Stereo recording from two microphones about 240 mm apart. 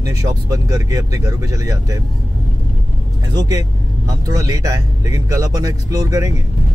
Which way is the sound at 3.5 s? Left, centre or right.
Centre.